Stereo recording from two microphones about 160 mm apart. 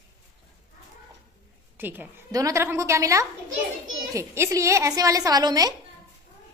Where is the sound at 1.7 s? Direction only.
10° right (ahead or behind).